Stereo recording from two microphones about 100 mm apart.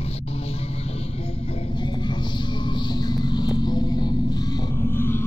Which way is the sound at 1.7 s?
50° left (ahead or behind).